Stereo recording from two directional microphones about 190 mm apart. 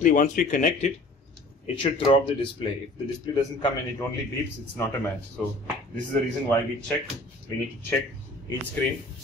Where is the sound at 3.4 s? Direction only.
25° left (ahead or behind).